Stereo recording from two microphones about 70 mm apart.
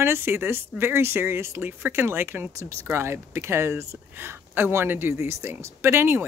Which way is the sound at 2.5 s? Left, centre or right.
Right.